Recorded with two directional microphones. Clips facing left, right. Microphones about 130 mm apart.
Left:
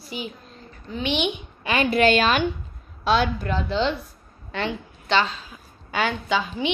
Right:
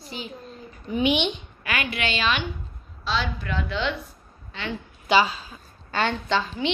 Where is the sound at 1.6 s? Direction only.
30° left (ahead or behind); by 3.5 s 50° left (ahead or behind).